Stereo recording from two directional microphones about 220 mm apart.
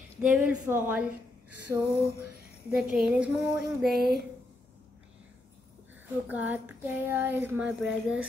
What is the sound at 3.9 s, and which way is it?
Speech, 45° right (ahead or behind).